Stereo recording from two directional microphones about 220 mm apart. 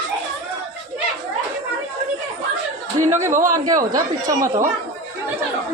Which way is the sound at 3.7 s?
15° right (ahead or behind).